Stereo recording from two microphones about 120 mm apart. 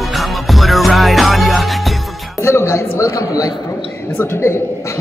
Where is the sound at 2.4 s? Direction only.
20° left (ahead or behind).